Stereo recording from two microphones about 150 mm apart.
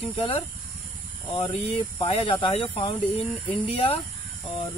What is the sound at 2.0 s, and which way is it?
Speech, 40° left (ahead or behind).